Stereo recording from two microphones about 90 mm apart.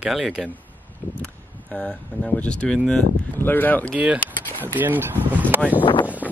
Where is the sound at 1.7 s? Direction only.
10° left (ahead or behind).